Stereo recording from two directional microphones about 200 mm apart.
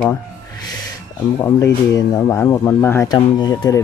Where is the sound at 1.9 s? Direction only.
15° left (ahead or behind).